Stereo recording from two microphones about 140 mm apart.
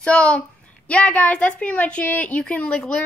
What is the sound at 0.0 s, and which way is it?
A woman's voice, 10° left (ahead or behind).